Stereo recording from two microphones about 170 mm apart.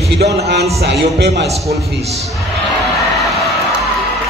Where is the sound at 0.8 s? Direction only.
75° right (ahead or behind).